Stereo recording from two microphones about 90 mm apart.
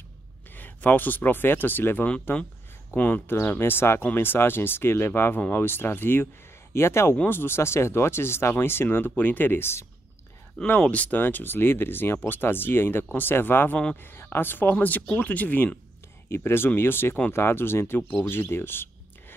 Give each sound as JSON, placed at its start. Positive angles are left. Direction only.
{"t": 0.6, "sound": "speech", "side_deg": 20}
{"t": 10.8, "sound": "speech", "side_deg": 15}